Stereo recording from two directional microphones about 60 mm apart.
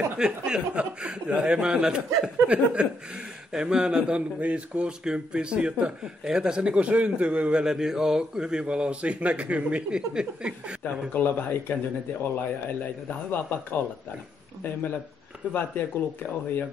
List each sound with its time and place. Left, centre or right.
0.2 s a man's voice: centre
7.6 s speech: centre
10.8 s speech: left
15.5 s speech: left